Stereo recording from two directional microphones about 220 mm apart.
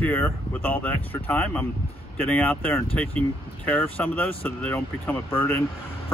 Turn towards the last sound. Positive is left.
turn(degrees=5)  # may be behind; listen again after turning